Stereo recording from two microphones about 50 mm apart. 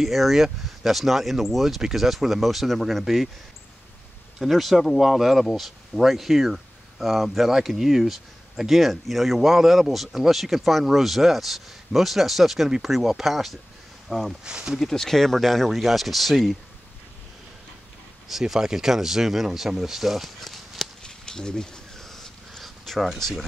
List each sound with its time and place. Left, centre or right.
0.0 s speech: centre
4.4 s speech: centre
14.4 s speech: centre
14.8 s speech: centre
18.3 s speech: centre
21.0 s a sound: centre